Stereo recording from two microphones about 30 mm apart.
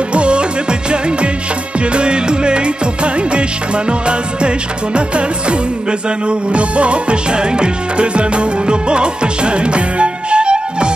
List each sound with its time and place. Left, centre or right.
0.1 s music of bollywood: right
1.9 s music: right